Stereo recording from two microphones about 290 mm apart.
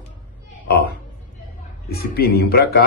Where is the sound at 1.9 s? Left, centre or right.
Left.